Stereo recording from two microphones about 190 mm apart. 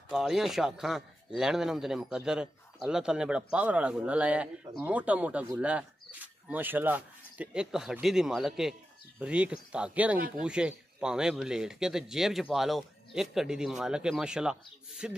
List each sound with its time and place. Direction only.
0.1 s speech: centre (ahead or behind)
10.1 s speech: 50° right (ahead or behind)
10.4 s speech: 5° right (ahead or behind)